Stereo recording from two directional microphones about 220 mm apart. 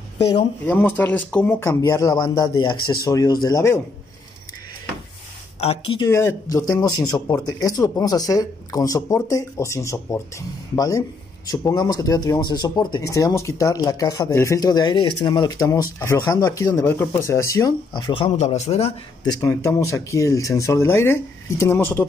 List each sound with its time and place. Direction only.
0.7 s speech: 10° left (ahead or behind)
5.6 s speech: 25° left (ahead or behind)
6.0 s speech: 10° left (ahead or behind); by 18.9 s 30° left (ahead or behind)
19.4 s speech: 10° left (ahead or behind)